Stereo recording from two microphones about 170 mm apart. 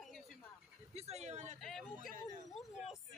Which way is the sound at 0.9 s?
40° right (ahead or behind).